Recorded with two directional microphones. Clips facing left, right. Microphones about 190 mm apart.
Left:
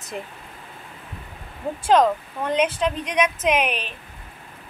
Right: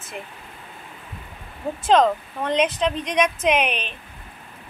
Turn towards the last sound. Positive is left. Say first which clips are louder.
# right 1 dB
turn(degrees=5)  # may be behind; listen again after turning